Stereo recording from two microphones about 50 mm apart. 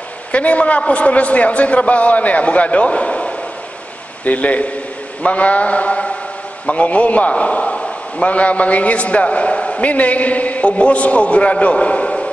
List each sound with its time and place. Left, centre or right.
0.3 s a man's voice: left